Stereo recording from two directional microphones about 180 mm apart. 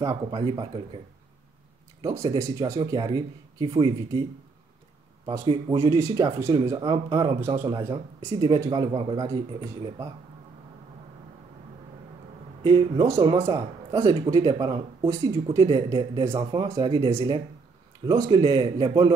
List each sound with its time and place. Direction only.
0.1 s speech: 25° right (ahead or behind)
2.0 s speech: 20° right (ahead or behind)
5.4 s speech: 30° right (ahead or behind)
5.9 s speech: 15° right (ahead or behind)
12.6 s speech: 20° right (ahead or behind)